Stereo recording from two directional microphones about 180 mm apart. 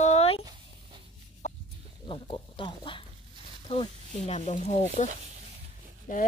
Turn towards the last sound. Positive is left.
turn(degrees=45)  # may be behind; listen again after turning